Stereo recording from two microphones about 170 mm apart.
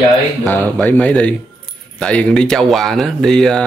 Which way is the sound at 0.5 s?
10° left (ahead or behind).